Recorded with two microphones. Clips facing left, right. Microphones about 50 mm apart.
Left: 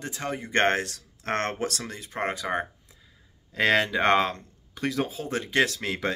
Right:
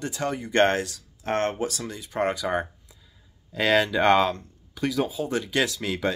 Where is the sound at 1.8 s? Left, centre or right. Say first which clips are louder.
Right 2 dB; left.